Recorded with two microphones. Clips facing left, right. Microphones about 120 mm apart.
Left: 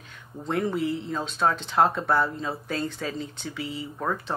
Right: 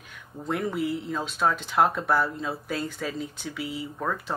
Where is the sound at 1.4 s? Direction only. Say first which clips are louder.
Left 1 dB; 30° left (ahead or behind).